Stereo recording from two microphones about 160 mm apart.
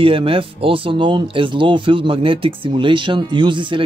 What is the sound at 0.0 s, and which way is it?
Speech, 35° right (ahead or behind).